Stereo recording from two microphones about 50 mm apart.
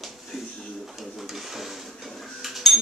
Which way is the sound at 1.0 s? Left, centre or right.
Centre.